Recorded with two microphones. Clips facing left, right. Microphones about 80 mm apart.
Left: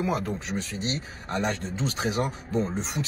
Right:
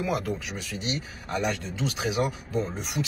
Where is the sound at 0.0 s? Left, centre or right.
Left.